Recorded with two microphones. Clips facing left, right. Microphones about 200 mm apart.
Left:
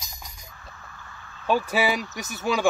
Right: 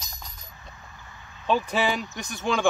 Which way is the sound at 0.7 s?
15° right (ahead or behind).